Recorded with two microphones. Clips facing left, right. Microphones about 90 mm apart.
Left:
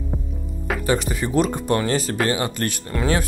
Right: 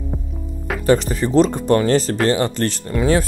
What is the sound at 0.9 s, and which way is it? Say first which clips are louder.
Speech: right 4 dB; 10° left (ahead or behind).